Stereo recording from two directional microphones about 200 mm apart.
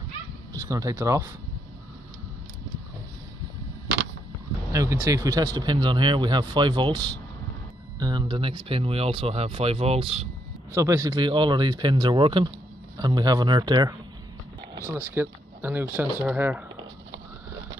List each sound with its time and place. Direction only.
0.7 s speech: 15° right (ahead or behind)
4.7 s speech: 15° right (ahead or behind)
8.0 s speech: 20° right (ahead or behind)
10.7 s speech: 15° right (ahead or behind)
15.0 s speech: 10° right (ahead or behind)